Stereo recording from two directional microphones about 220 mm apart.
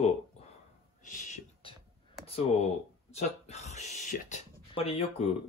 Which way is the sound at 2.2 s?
30° left (ahead or behind).